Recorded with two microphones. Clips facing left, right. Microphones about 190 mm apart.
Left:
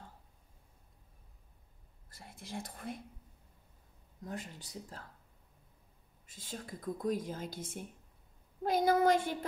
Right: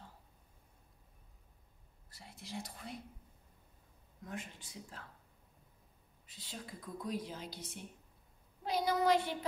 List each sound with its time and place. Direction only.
2.0 s speech: 50° left (ahead or behind)
4.2 s speech: 35° left (ahead or behind)
6.2 s a woman's voice: 45° left (ahead or behind)